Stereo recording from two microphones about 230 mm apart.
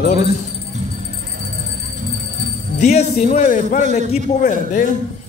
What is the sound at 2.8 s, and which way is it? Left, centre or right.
A man's voice, left.